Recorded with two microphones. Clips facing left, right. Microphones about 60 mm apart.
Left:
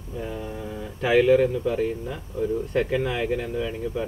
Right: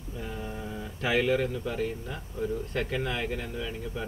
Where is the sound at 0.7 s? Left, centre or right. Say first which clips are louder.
Left 5 dB; centre.